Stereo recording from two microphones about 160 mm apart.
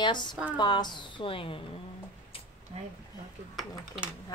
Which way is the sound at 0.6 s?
30° left (ahead or behind).